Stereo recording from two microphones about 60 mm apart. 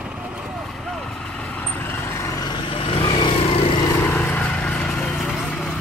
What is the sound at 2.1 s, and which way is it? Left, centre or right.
Vehicle, left.